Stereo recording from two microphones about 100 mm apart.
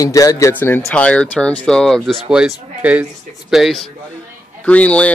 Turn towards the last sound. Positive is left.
turn(degrees=15)  # may be behind; listen again after turning